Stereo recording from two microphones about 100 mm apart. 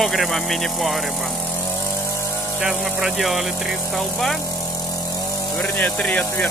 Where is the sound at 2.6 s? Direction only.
5° right (ahead or behind).